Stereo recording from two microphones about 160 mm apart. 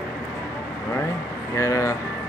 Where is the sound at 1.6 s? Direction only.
20° left (ahead or behind).